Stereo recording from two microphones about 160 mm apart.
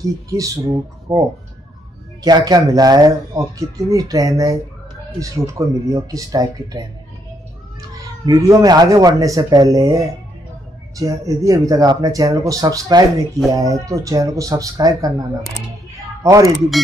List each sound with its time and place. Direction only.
0.3 s speech: 20° right (ahead or behind)
2.2 s speech: 25° right (ahead or behind)
8.3 s speech: 20° right (ahead or behind)